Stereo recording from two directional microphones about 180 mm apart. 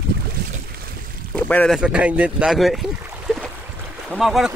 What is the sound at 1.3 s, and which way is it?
Speech, 5° left (ahead or behind).